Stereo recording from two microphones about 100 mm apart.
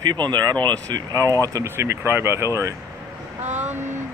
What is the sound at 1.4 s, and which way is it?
Speech, 35° right (ahead or behind).